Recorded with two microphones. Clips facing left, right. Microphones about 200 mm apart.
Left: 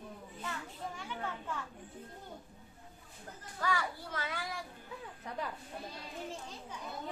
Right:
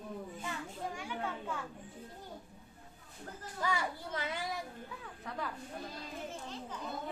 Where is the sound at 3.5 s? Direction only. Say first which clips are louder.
Even; 20° right (ahead or behind).